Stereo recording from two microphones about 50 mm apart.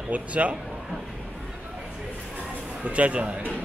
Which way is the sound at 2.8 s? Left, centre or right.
Right.